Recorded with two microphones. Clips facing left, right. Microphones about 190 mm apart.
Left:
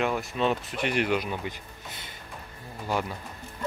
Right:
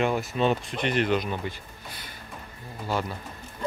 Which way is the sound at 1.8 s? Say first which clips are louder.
Right 1 dB; 25° left (ahead or behind).